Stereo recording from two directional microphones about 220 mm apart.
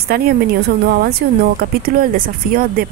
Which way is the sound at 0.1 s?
45° right (ahead or behind).